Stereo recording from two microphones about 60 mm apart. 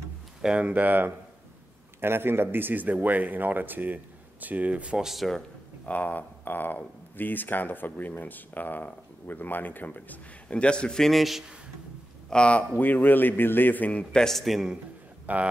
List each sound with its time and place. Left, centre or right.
0.6 s a man's voice: right
4.9 s a man's voice: centre
5.9 s speech: left
10.5 s a man's voice: centre
12.3 s a man's voice: centre
12.7 s speech: left
14.2 s a man's voice: centre
15.3 s speech: right